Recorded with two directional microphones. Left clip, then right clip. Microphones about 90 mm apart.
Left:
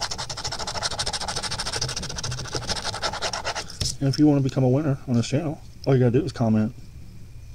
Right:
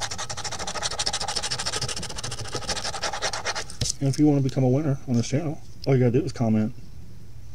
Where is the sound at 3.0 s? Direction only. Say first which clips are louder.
Even; 30° right (ahead or behind).